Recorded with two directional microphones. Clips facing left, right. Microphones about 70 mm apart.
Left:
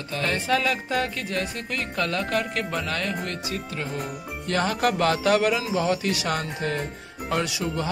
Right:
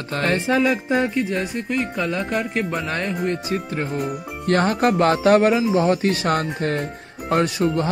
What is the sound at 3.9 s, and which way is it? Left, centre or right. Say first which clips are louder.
Speech: right 6 dB; right.